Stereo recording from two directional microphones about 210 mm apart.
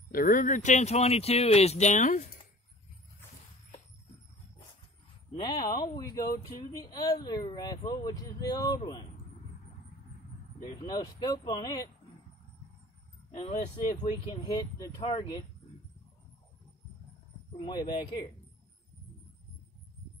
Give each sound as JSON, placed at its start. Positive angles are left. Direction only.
{"t": 0.1, "sound": "speech", "side_deg": 40}
{"t": 5.4, "sound": "speech", "side_deg": 15}
{"t": 10.9, "sound": "speech", "side_deg": 20}
{"t": 13.3, "sound": "speech", "side_deg": 30}